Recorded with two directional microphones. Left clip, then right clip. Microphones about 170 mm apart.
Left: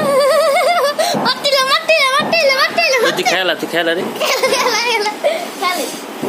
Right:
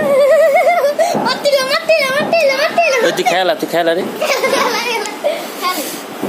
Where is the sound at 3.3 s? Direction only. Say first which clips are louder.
Right 2 dB; 10° right (ahead or behind).